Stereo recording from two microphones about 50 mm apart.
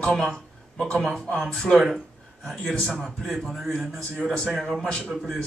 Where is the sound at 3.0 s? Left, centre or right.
Centre.